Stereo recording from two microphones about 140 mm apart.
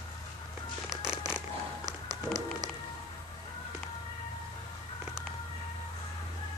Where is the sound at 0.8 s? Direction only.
5° right (ahead or behind).